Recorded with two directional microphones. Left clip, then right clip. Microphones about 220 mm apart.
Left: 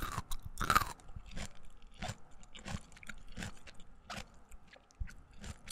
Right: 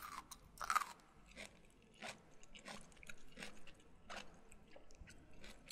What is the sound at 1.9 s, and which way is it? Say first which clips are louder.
Biting: left 6 dB; 30° left (ahead or behind).